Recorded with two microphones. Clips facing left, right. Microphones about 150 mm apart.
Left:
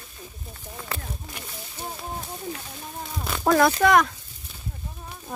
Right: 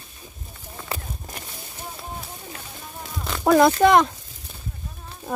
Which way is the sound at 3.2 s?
Centre (ahead or behind).